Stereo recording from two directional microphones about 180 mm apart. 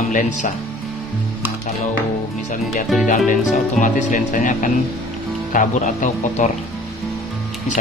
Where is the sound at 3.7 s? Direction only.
45° left (ahead or behind).